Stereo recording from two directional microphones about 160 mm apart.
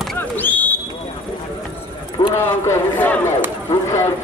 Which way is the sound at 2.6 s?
10° left (ahead or behind).